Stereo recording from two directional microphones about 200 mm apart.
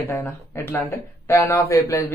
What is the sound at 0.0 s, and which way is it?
Speech, 10° left (ahead or behind).